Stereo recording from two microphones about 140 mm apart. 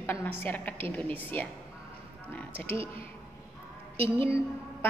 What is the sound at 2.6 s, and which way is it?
Speech, 40° right (ahead or behind).